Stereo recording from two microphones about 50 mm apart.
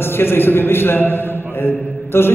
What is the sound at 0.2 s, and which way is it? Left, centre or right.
Speech, left.